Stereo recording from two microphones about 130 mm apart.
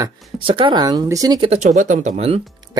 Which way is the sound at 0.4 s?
40° right (ahead or behind).